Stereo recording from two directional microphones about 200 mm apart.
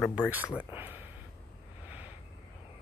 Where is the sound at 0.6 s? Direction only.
10° right (ahead or behind).